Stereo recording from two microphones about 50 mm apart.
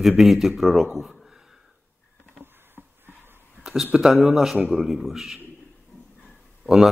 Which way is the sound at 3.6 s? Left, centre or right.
Centre.